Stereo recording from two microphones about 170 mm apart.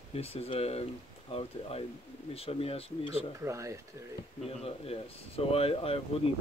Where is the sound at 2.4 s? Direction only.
35° left (ahead or behind).